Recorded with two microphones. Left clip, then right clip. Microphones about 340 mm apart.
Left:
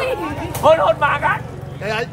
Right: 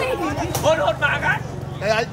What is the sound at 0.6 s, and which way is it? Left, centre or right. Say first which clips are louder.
Speech: left 6 dB; centre.